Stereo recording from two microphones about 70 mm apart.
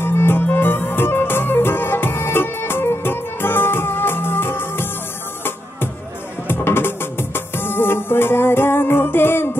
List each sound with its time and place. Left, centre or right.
0.0 s music: left
6.4 s music: left